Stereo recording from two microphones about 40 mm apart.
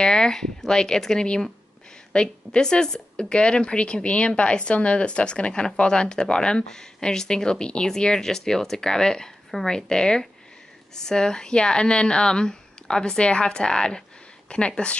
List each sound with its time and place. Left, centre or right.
0.0 s speech: centre
2.1 s speech: left